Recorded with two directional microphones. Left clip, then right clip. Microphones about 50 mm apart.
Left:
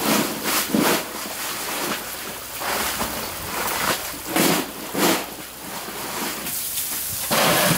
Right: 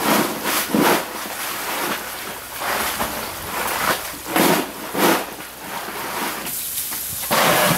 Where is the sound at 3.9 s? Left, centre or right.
Right.